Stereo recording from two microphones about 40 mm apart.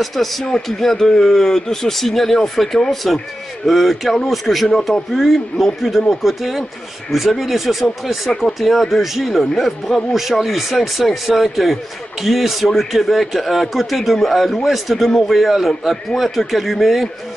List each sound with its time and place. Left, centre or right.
0.0 s speech: centre